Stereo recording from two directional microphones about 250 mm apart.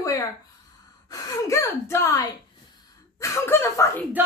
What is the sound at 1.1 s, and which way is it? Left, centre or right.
Speech, centre.